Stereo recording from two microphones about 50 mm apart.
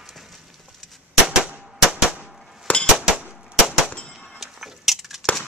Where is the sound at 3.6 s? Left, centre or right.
Centre.